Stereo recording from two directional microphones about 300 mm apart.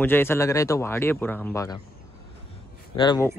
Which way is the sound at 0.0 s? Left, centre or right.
Centre.